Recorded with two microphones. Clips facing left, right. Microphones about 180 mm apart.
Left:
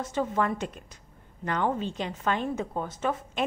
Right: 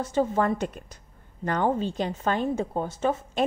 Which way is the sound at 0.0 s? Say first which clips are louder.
Right 4 dB; 30° right (ahead or behind).